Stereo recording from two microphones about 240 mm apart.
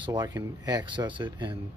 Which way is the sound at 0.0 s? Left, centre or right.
Centre.